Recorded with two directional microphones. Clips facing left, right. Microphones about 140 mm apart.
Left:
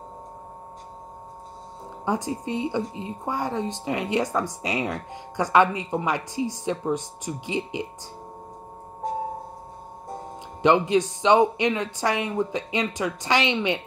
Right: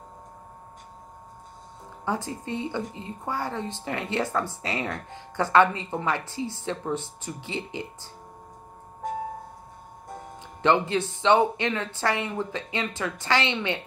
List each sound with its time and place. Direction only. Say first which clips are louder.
2.0 s speech: left 3 dB; 15° left (ahead or behind)
9.0 s music: left 3 dB; 35° left (ahead or behind)
10.6 s speech: left 3 dB; 15° left (ahead or behind)